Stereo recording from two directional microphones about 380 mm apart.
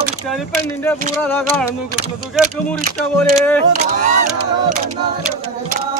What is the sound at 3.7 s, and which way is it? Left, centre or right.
Speech, right.